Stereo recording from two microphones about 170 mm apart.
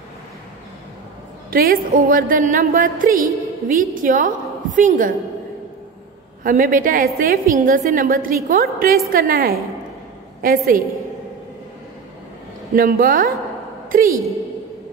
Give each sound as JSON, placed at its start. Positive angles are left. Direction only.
{"t": 1.5, "sound": "a woman's voice", "side_deg": -60}
{"t": 6.4, "sound": "a woman's voice", "side_deg": -55}
{"t": 12.7, "sound": "a woman's voice", "side_deg": -60}